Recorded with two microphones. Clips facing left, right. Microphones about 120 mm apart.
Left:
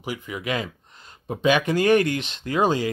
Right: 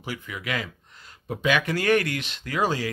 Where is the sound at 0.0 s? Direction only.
20° left (ahead or behind).